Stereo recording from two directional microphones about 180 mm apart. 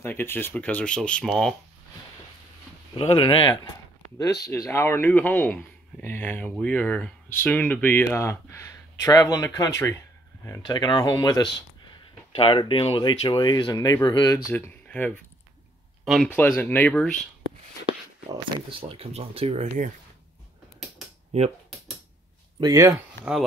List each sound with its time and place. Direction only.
0.0 s speech: 10° left (ahead or behind)
2.9 s speech: 30° left (ahead or behind)
4.5 s speech: 10° left (ahead or behind)
14.5 s speech: 10° left (ahead or behind)
16.3 s speech: 10° left (ahead or behind)
18.3 s speech: 30° right (ahead or behind)
21.3 s speech: 40° right (ahead or behind)
22.6 s speech: 20° right (ahead or behind)